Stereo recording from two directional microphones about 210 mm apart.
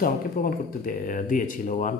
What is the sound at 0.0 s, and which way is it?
Speech, 45° left (ahead or behind).